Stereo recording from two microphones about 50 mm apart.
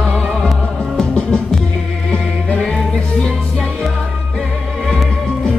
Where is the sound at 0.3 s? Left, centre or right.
Centre.